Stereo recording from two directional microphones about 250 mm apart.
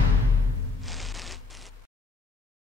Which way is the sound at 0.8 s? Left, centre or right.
Centre.